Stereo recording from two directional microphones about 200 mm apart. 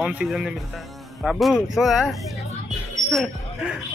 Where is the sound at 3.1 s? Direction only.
Centre (ahead or behind).